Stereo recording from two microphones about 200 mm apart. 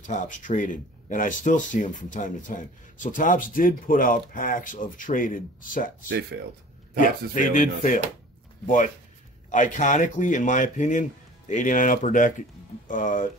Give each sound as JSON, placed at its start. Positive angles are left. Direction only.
{"t": 0.0, "sound": "speech", "side_deg": 40}
{"t": 6.3, "sound": "speech", "side_deg": -60}
{"t": 7.0, "sound": "speech", "side_deg": 40}